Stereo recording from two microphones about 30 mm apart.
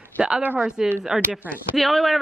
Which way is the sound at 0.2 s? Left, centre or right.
Right.